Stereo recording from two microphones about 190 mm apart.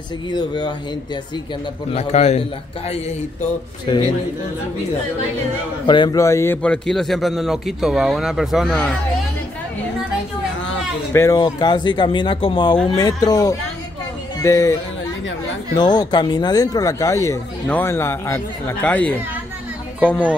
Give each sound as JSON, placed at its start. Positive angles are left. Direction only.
{"t": 0.3, "sound": "speech", "side_deg": 20}
{"t": 1.9, "sound": "a man's voice", "side_deg": 35}
{"t": 3.8, "sound": "speech", "side_deg": 25}
{"t": 5.9, "sound": "a man's voice", "side_deg": 25}
{"t": 11.1, "sound": "speech", "side_deg": 20}